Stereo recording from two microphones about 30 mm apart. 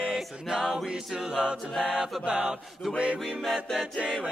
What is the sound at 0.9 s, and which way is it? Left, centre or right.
A capella, centre.